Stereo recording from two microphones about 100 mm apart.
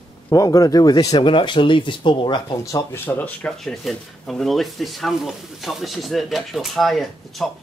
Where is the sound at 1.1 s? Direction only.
55° left (ahead or behind).